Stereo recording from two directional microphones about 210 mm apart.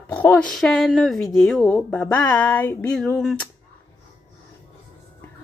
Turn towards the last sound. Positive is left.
turn(degrees=5)  # may be behind; listen again after turning